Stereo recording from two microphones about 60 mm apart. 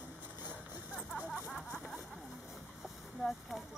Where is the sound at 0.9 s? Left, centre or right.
Centre.